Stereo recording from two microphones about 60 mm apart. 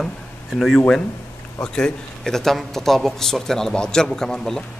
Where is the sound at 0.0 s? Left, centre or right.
Centre.